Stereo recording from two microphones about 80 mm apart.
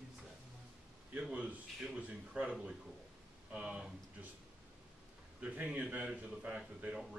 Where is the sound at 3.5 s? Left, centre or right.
Centre.